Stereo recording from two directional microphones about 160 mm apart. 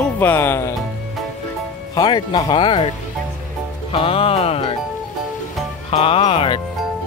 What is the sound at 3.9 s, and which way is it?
Music, 35° left (ahead or behind).